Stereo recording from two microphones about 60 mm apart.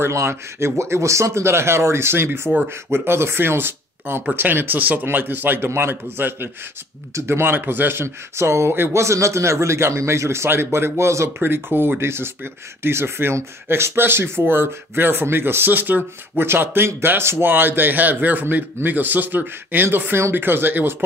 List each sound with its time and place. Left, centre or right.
0.0 s speech: right
9.0 s speech: right
11.3 s speech: right